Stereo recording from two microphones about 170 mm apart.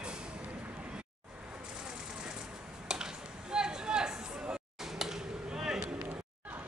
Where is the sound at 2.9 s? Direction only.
5° right (ahead or behind).